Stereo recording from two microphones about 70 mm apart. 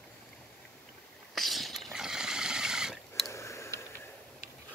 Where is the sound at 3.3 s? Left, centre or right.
Left.